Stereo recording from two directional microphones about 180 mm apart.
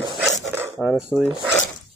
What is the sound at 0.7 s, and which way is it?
Filing, 5° right (ahead or behind).